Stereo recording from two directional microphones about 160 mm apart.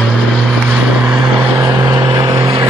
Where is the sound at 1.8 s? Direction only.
25° right (ahead or behind).